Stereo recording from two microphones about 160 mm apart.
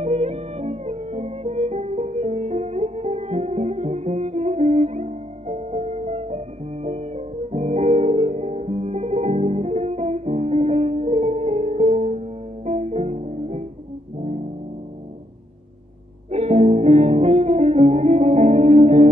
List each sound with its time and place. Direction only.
0.0 s music: 45° right (ahead or behind)
16.3 s music: 45° right (ahead or behind)